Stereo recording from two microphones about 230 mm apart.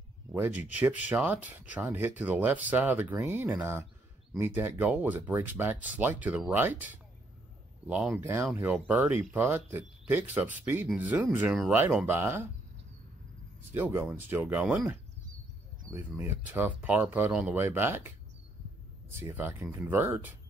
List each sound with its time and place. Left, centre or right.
0.3 s speech: centre
13.7 s speech: centre